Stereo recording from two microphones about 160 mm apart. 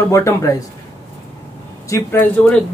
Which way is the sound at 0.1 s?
20° left (ahead or behind).